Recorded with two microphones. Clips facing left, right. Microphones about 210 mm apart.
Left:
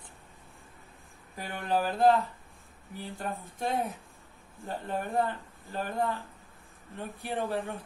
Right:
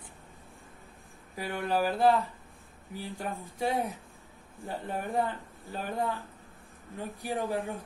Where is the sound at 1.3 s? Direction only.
10° right (ahead or behind).